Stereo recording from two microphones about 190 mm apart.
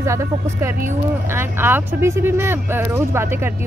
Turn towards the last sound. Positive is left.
turn(degrees=-10)  # may be behind; listen again after turning